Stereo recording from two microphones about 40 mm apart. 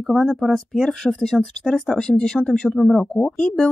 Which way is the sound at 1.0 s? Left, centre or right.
Centre.